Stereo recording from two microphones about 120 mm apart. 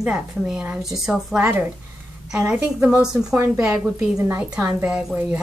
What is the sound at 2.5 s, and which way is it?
A woman's voice, 15° right (ahead or behind).